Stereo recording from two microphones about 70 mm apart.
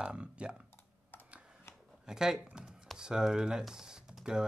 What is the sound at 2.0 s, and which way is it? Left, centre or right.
Speech, centre.